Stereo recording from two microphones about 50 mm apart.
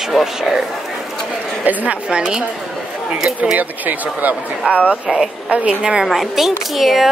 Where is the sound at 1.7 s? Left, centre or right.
Right.